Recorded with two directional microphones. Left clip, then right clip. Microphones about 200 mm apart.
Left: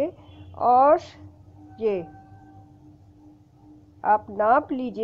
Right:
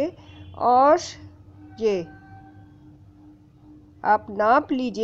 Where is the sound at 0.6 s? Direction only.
20° right (ahead or behind).